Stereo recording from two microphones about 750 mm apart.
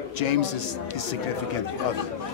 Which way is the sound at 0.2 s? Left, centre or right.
Left.